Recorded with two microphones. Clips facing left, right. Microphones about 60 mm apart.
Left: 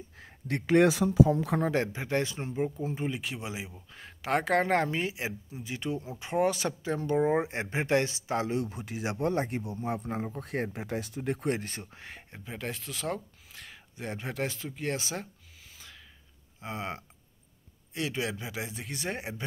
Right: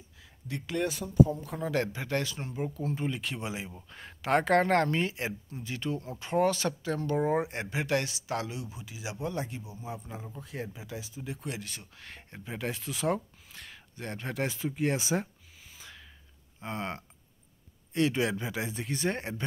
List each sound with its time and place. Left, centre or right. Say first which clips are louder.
0.2 s a sound: left 5 dB; left
0.8 s speech: left 3 dB; left
1.7 s speech: left 1 dB; left
8.5 s speech: left 8 dB; left
9.6 s speech: left 7 dB; left
12.1 s speech: right 6 dB; centre
13.5 s speech: even; centre
16.5 s speech: right 1 dB; centre